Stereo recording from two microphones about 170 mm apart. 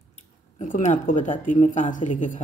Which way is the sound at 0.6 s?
50° left (ahead or behind).